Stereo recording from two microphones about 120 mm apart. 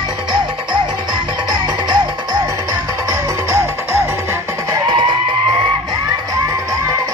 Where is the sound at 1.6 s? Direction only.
35° right (ahead or behind).